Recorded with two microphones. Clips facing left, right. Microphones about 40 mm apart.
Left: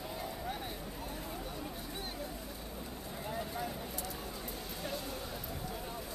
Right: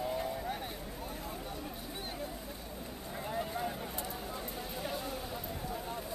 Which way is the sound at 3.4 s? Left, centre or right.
Centre.